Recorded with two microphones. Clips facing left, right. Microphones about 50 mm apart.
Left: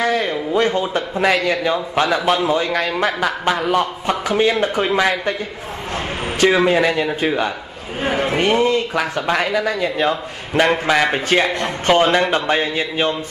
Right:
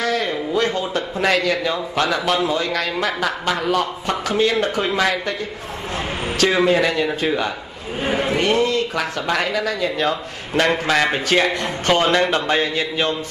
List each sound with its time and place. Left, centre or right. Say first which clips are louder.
0.0 s a man's voice: left 2 dB; left
6.5 s a man's voice: even; centre